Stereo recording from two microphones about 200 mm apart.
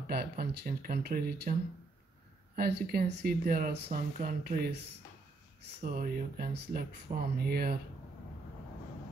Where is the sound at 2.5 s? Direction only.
50° right (ahead or behind).